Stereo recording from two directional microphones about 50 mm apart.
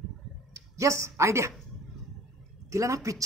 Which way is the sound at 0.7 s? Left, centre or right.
Right.